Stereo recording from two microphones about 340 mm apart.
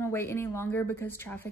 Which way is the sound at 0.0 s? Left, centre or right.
Centre.